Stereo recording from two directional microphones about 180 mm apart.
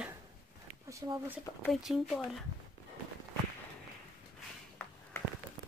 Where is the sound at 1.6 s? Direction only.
Centre (ahead or behind).